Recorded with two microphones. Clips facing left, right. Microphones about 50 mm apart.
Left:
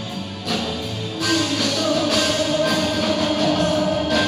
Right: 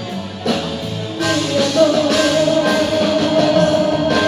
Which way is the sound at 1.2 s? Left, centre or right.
Right.